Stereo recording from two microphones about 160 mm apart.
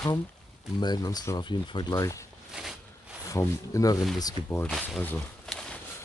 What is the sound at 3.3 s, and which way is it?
Speech, 20° left (ahead or behind).